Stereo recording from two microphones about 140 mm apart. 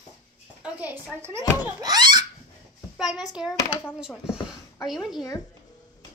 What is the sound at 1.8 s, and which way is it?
Speech, 30° right (ahead or behind).